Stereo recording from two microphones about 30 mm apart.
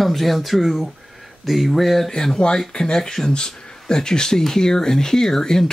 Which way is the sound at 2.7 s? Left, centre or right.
Left.